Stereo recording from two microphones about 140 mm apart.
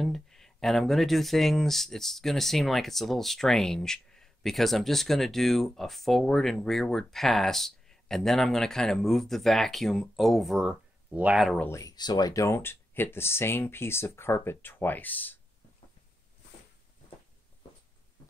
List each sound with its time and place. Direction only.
0.0 s speech: 5° left (ahead or behind)
11.5 s speech: 15° left (ahead or behind)
11.8 s speech: 30° left (ahead or behind); by 15.3 s 10° left (ahead or behind)